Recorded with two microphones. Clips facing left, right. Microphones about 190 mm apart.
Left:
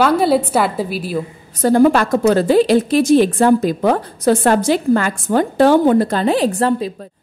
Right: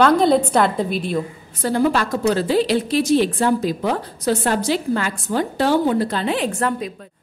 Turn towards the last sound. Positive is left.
turn(degrees=30)  # may be behind; listen again after turning